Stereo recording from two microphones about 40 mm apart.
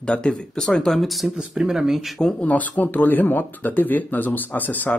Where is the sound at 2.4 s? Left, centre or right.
Left.